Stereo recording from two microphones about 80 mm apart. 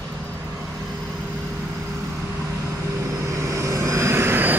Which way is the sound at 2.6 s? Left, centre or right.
Right.